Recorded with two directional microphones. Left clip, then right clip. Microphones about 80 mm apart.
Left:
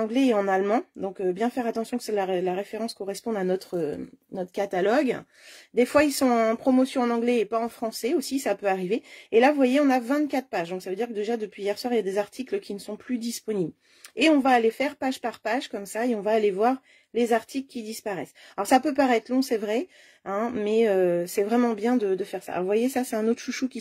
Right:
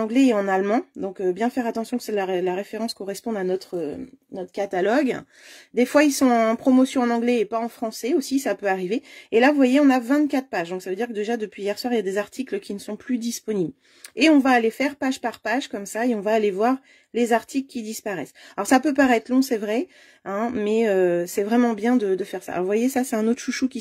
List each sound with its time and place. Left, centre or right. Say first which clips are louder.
0.0 s speech: right 3 dB; centre
2.6 s speech: right 2 dB; centre
3.4 s speech: right 1 dB; left
4.6 s speech: right 2 dB; centre
5.9 s speech: right 5 dB; right
7.4 s speech: right 1 dB; centre; by 23.8 s right